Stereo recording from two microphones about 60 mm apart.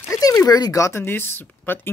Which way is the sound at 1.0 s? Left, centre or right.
Left.